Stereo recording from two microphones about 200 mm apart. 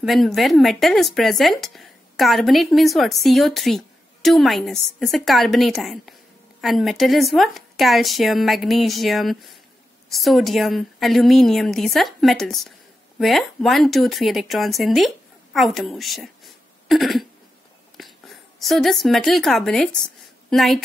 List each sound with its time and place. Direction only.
0.0 s speech: centre (ahead or behind)
18.6 s speech: centre (ahead or behind)